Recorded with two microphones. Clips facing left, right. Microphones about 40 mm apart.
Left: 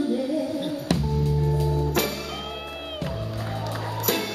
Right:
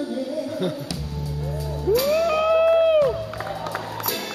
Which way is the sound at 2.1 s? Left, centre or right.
Right.